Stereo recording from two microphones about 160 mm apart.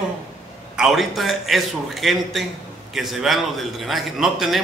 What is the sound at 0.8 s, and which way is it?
A man's voice, centre (ahead or behind).